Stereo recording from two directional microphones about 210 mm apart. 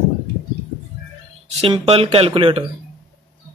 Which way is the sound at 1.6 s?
30° right (ahead or behind).